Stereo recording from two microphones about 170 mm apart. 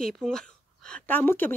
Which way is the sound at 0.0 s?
5° left (ahead or behind).